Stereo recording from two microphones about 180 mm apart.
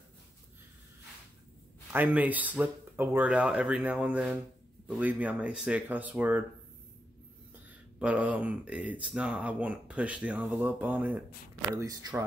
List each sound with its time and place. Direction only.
1.9 s speech: 10° right (ahead or behind)
8.0 s speech: 5° right (ahead or behind)